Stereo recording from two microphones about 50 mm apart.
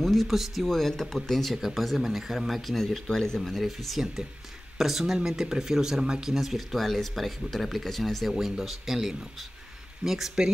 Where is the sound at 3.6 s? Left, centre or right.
Centre.